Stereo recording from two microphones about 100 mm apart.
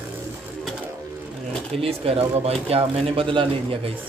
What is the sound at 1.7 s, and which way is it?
Speech, 80° right.